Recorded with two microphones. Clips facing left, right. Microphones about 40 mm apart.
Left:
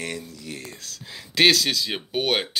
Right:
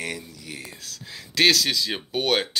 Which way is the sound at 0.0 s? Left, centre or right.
Centre.